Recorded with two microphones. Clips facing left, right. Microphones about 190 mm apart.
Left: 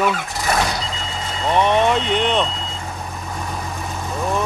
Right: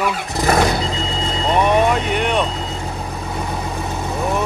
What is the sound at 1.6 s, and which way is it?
Speech, 10° right (ahead or behind).